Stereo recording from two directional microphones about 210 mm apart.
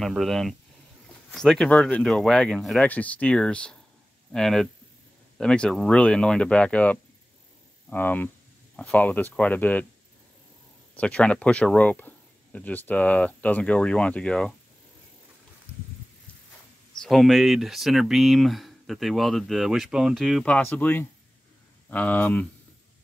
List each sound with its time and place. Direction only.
0.0 s speech: centre (ahead or behind)
11.0 s speech: 5° left (ahead or behind)
17.0 s speech: centre (ahead or behind)